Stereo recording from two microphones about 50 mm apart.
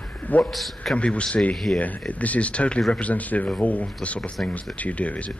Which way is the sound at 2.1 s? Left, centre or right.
Left.